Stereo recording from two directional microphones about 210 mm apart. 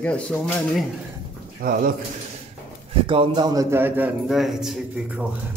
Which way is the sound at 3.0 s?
25° right (ahead or behind).